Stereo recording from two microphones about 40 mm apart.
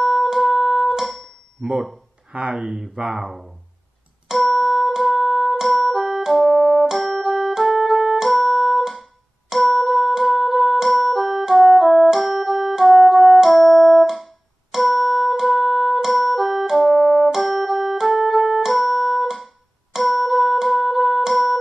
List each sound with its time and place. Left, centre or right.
0.0 s music: centre
1.0 s a sound: centre
1.6 s speech: right
2.5 s speech: centre
4.3 s music: centre
12.1 s keyboard: centre
14.1 s music: centre